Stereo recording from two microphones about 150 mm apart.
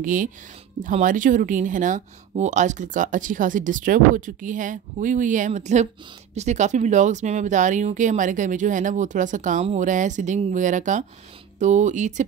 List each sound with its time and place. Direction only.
0.0 s speech: 60° right (ahead or behind)